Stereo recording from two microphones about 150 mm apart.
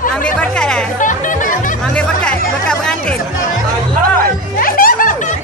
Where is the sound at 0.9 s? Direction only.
60° left (ahead or behind).